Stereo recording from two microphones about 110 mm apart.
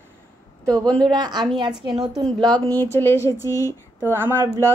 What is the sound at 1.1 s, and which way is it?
Speech, 40° right (ahead or behind).